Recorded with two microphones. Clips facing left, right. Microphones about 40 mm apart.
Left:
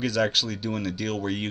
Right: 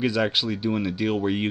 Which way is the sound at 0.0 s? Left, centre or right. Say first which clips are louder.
Right 1 dB; centre.